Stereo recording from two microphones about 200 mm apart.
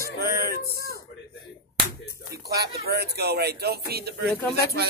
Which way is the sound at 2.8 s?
50° right (ahead or behind).